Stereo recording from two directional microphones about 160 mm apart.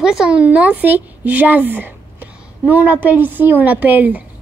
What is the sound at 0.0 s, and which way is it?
A woman's voice, 5° right (ahead or behind).